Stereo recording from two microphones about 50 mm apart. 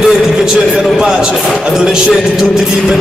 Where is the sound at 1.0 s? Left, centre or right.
Centre.